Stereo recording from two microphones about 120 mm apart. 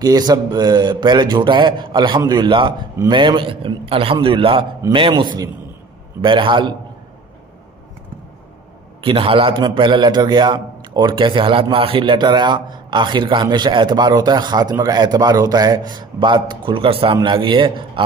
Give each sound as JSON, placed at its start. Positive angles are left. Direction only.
{"t": 0.0, "sound": "a man's voice", "side_deg": -35}
{"t": 9.0, "sound": "a man's voice", "side_deg": -45}